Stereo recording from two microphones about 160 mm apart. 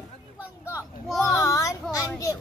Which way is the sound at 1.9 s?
20° left (ahead or behind).